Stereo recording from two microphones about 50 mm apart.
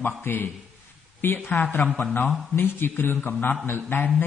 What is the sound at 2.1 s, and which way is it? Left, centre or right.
A man's voice, left.